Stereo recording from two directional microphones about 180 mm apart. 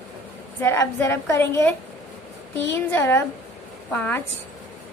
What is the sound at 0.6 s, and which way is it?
A woman's voice, 15° left (ahead or behind).